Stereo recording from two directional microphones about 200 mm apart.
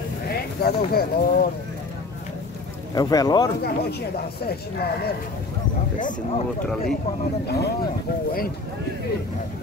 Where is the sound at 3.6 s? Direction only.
50° left (ahead or behind).